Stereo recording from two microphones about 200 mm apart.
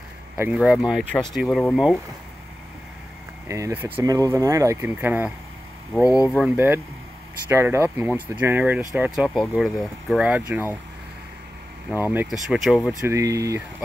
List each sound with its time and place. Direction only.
0.4 s speech: 5° right (ahead or behind)
3.4 s speech: 15° right (ahead or behind)
12.0 s speech: 10° right (ahead or behind)
13.0 s speech: 15° right (ahead or behind)